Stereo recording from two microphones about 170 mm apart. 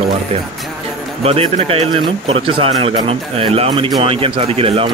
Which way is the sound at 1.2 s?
35° right (ahead or behind).